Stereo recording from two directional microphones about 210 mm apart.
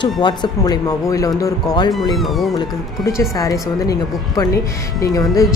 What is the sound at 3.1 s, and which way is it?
Speech, 15° left (ahead or behind).